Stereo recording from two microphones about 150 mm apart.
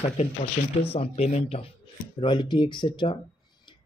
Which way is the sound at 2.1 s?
30° left (ahead or behind).